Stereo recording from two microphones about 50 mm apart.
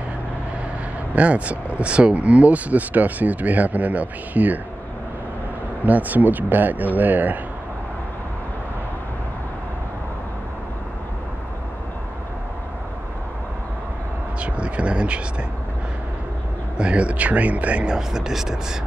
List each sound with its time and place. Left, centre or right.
1.1 s speech: right
5.9 s speech: right
14.4 s vehicle: right
16.7 s speech: right
17.9 s speech: centre